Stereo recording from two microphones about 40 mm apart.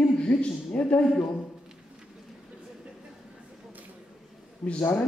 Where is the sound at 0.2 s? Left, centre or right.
Left.